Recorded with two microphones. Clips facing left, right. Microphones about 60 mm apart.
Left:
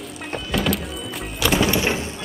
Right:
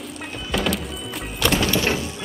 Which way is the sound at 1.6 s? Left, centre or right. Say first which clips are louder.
Left 1 dB; centre.